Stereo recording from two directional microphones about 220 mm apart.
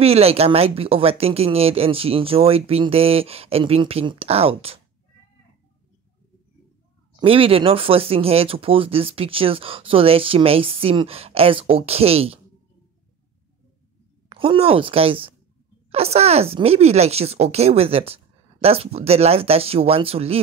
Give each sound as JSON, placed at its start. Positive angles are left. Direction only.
{"t": 0.0, "sound": "speech", "side_deg": -25}
{"t": 7.2, "sound": "speech", "side_deg": -25}
{"t": 14.3, "sound": "speech", "side_deg": -25}